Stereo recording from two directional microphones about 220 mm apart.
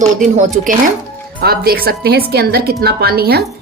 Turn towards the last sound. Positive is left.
turn(degrees=-45)  # may be behind; listen again after turning